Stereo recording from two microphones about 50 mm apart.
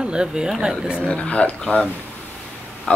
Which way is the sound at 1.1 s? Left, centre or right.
Left.